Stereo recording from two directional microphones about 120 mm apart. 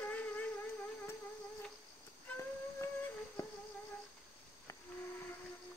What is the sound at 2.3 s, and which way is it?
Music, 25° left (ahead or behind).